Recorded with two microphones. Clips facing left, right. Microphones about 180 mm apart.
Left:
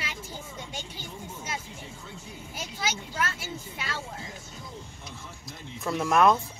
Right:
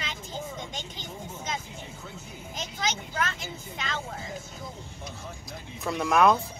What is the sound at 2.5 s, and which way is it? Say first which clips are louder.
Speech: right 1 dB; 10° left (ahead or behind).